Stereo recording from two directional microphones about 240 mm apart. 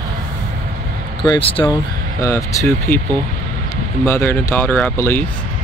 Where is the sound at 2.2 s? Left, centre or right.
Centre.